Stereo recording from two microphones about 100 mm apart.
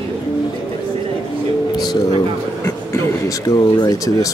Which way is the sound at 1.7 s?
40° left (ahead or behind).